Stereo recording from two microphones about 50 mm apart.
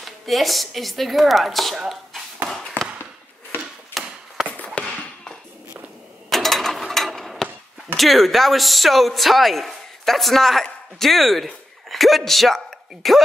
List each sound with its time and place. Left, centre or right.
0.0 s speech: centre
1.8 s a sound: centre
2.8 s a sound: left
4.0 s chop: centre
4.8 s tap: left
6.3 s mechanisms: centre
7.9 s speech: centre